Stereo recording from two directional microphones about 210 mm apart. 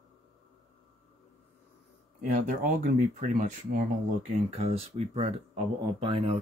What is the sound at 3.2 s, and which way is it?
Speech, 35° right (ahead or behind).